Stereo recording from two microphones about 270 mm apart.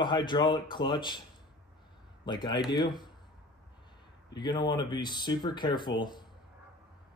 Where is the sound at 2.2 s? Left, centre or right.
Centre.